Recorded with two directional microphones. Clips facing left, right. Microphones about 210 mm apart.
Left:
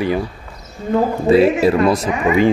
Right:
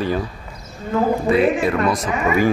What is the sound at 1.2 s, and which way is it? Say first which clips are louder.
Speech: left 8 dB; 30° left (ahead or behind).